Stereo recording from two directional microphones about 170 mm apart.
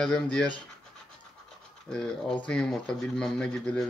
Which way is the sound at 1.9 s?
5° left (ahead or behind).